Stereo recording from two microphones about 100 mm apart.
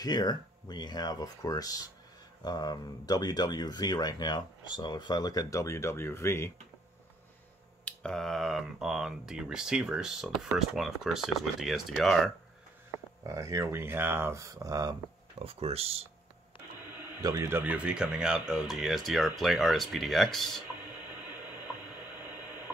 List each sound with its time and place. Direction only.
0.0 s speech: 45° left (ahead or behind); by 6.5 s 25° left (ahead or behind)
7.8 s speech: 5° left (ahead or behind)
13.2 s speech: 35° right (ahead or behind)
15.4 s speech: 85° right
17.2 s a man's voice: 35° right (ahead or behind)
17.5 s speech: 20° right (ahead or behind); by 20.6 s 5° left (ahead or behind)